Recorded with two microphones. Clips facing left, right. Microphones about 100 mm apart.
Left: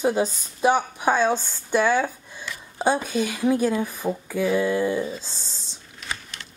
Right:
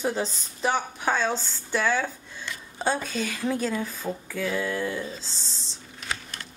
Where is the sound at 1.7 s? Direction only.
15° left (ahead or behind).